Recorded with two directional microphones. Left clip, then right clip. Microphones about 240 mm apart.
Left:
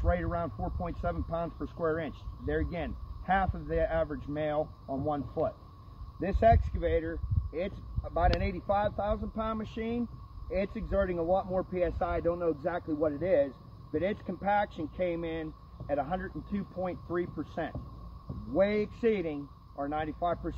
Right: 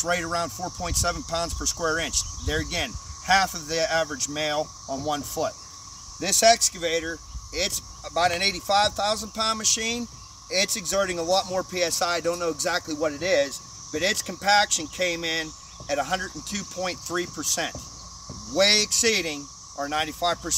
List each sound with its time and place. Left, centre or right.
0.0 s speech: centre